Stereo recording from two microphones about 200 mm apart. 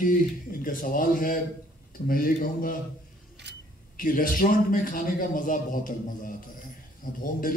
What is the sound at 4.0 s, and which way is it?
A man's voice, 45° left (ahead or behind).